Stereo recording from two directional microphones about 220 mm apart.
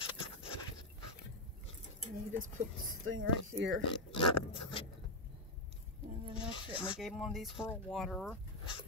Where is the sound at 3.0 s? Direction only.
65° right (ahead or behind).